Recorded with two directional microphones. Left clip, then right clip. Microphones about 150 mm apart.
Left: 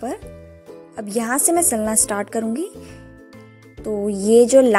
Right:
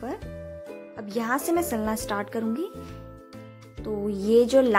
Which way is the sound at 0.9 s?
30° left (ahead or behind).